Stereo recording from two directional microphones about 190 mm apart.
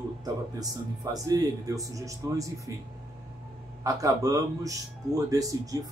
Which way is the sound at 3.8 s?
15° right (ahead or behind).